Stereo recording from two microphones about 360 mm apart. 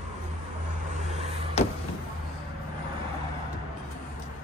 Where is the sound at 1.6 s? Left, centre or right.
Centre.